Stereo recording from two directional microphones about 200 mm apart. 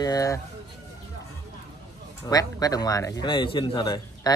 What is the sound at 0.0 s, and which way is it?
Speech, 15° left (ahead or behind).